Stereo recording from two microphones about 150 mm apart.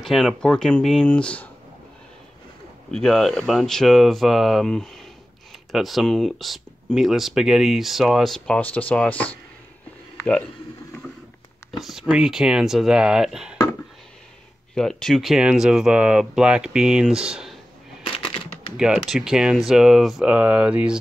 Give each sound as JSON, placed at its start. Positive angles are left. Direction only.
{"t": 0.0, "sound": "speech", "side_deg": 0}
{"t": 2.9, "sound": "speech", "side_deg": 0}
{"t": 11.8, "sound": "speech", "side_deg": 0}
{"t": 14.8, "sound": "speech", "side_deg": 5}
{"t": 18.0, "sound": "a sound", "side_deg": 35}
{"t": 18.8, "sound": "speech", "side_deg": -5}